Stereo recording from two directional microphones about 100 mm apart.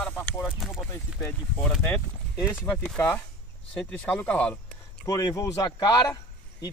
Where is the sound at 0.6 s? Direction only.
Centre (ahead or behind).